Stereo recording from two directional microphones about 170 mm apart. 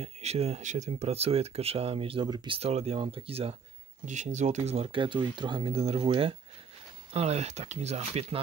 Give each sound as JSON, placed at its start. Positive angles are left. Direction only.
{"t": 0.0, "sound": "speech", "side_deg": -40}